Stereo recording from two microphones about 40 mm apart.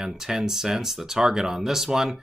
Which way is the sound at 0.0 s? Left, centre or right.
Centre.